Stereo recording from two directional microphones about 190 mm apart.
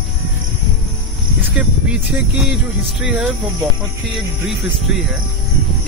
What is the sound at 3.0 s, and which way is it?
Speech, 5° right (ahead or behind).